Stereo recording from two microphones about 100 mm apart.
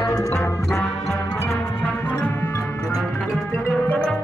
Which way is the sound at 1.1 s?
30° left (ahead or behind).